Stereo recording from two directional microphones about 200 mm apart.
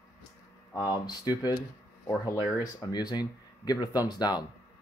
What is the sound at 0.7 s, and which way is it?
Speech, 20° left (ahead or behind).